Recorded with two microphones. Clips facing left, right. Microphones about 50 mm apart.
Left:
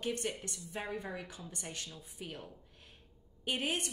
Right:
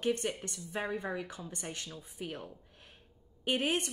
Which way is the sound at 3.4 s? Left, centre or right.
Right.